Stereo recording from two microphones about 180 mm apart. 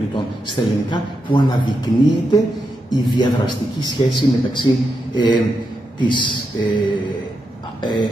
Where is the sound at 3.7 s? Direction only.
25° left (ahead or behind).